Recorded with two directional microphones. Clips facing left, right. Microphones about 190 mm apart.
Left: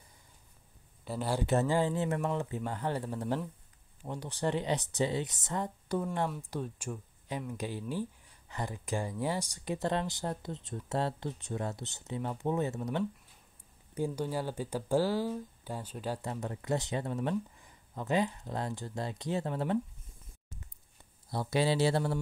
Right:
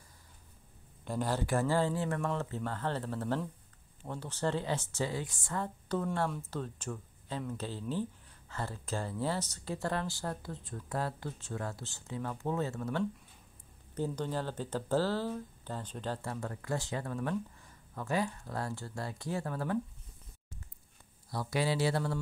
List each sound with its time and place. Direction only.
1.0 s speech: 5° left (ahead or behind)
1.4 s speech: 20° left (ahead or behind)
21.3 s speech: 25° left (ahead or behind)